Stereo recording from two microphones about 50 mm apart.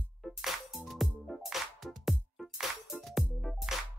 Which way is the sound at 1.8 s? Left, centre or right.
Centre.